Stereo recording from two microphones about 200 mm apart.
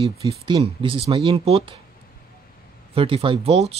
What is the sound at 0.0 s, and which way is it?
Speech, 25° right (ahead or behind).